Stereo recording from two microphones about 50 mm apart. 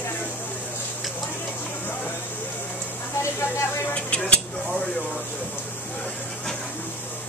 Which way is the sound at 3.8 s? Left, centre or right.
Left.